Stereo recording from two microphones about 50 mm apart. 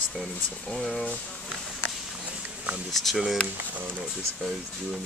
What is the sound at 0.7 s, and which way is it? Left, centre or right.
Speech, centre.